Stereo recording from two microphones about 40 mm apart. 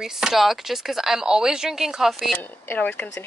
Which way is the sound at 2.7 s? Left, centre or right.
Left.